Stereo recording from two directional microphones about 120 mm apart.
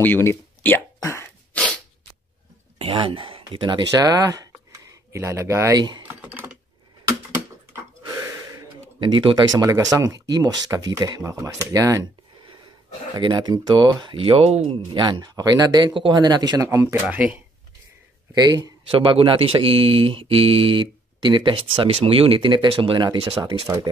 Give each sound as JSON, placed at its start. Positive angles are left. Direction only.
{"t": 0.0, "sound": "speech", "side_deg": 20}
{"t": 1.0, "sound": "cough", "side_deg": 20}
{"t": 1.5, "sound": "sneeze", "side_deg": 10}
{"t": 2.9, "sound": "speech", "side_deg": -45}
{"t": 5.8, "sound": "speech", "side_deg": -35}
{"t": 6.0, "sound": "typing", "side_deg": -20}
{"t": 9.0, "sound": "speech", "side_deg": -45}
{"t": 13.1, "sound": "speech", "side_deg": -35}
{"t": 16.6, "sound": "speech", "side_deg": -25}
{"t": 17.0, "sound": "speech", "side_deg": -10}
{"t": 18.3, "sound": "speech", "side_deg": -35}
{"t": 18.9, "sound": "speech", "side_deg": -50}
{"t": 23.4, "sound": "speech", "side_deg": -20}